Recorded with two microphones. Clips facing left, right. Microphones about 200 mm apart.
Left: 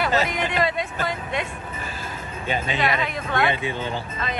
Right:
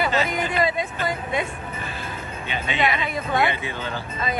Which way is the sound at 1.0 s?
5° right (ahead or behind).